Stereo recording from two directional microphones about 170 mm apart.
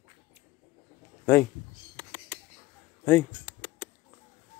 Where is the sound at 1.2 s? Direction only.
15° left (ahead or behind).